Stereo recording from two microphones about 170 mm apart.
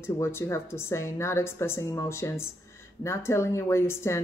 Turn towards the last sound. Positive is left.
turn(degrees=15)  # may be behind; listen again after turning